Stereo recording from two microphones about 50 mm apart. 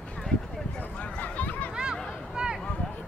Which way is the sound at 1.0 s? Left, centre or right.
Left.